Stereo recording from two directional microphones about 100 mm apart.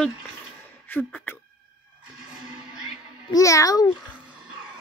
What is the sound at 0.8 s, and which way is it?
Beatboxing, 20° left (ahead or behind).